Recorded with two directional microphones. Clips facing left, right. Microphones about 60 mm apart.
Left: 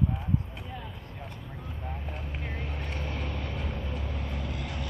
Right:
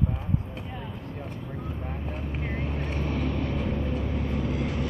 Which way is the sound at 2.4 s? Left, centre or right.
Centre.